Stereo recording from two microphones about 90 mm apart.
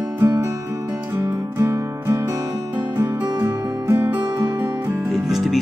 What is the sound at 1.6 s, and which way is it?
Music, 30° right (ahead or behind).